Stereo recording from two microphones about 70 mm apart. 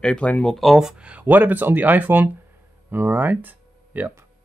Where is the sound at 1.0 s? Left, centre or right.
Right.